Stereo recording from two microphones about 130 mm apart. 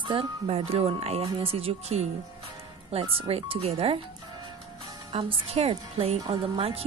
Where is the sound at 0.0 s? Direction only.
40° right (ahead or behind).